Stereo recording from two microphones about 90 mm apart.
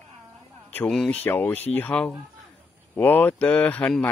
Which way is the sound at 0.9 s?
5° left (ahead or behind).